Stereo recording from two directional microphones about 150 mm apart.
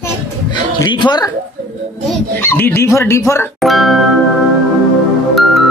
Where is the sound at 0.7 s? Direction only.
30° left (ahead or behind).